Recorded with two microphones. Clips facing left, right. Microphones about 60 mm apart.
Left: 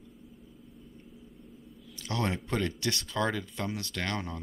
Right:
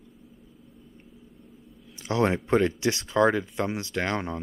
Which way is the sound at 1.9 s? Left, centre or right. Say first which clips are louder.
Right 8 dB; right.